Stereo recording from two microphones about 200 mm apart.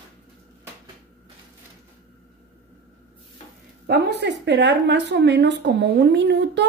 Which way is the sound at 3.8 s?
55° right (ahead or behind).